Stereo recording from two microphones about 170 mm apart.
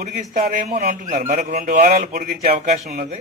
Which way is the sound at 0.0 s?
55° right (ahead or behind).